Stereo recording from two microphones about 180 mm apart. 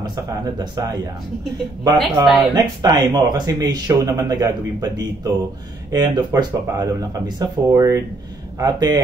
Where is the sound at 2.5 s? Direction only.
20° right (ahead or behind).